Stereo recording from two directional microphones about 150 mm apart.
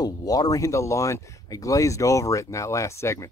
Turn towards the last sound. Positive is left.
turn(degrees=20)  # may be behind; listen again after turning